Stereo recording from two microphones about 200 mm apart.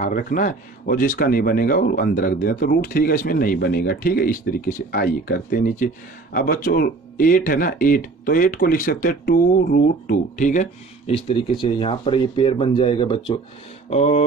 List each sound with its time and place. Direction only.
0.0 s speech: 45° left (ahead or behind); by 13.4 s 20° left (ahead or behind)
13.8 s speech: 35° left (ahead or behind)